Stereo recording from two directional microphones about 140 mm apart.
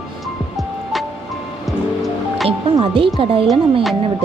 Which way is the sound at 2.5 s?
40° right (ahead or behind).